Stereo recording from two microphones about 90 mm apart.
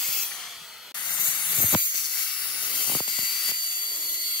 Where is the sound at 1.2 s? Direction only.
60° left (ahead or behind).